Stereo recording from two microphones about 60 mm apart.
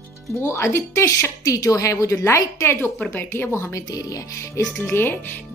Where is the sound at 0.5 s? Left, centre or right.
Left.